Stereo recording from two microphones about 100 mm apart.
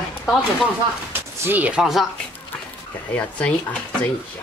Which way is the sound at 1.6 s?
10° right (ahead or behind).